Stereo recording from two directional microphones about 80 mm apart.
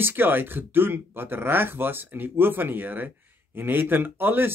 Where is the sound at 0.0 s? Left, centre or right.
Right.